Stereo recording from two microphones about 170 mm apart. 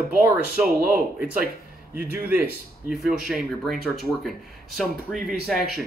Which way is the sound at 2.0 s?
65° right (ahead or behind).